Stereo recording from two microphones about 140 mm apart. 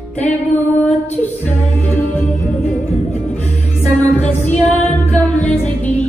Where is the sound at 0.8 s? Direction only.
10° left (ahead or behind).